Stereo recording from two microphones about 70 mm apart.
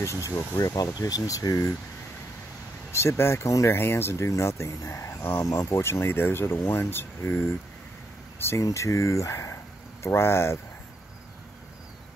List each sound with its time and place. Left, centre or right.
0.0 s speech: left
2.9 s speech: left
8.6 s speech: left